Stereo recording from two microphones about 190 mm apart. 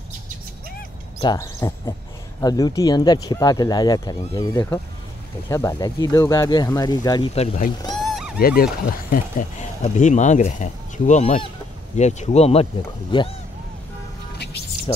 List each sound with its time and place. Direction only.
1.2 s speech: 20° left (ahead or behind)
7.9 s a sound: centre (ahead or behind)
8.4 s speech: 50° left (ahead or behind)
9.1 s speech: 40° left (ahead or behind)